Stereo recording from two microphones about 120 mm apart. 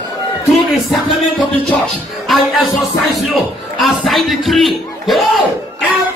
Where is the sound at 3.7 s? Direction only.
Centre (ahead or behind).